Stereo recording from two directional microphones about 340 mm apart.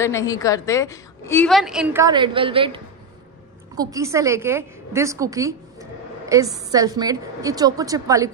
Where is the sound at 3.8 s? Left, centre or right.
Centre.